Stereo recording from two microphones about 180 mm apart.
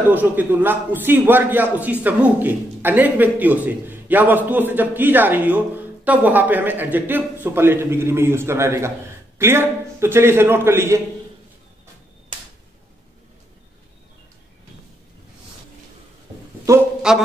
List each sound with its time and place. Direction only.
0.1 s a man's voice: 10° right (ahead or behind)
16.7 s speech: 15° right (ahead or behind)
17.1 s speech: 5° right (ahead or behind)